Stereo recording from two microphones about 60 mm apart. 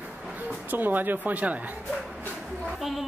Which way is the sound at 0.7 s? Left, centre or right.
Right.